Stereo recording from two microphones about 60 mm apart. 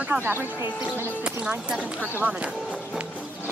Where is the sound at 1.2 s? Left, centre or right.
Centre.